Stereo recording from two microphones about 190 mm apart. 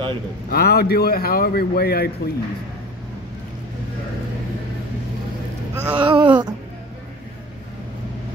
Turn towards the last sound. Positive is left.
turn(degrees=-25)  # may be behind; listen again after turning